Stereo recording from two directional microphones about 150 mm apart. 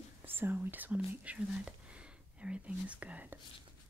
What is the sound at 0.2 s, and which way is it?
Speech, 15° right (ahead or behind).